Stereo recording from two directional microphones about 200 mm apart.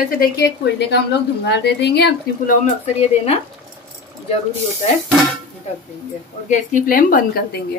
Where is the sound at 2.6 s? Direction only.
30° left (ahead or behind).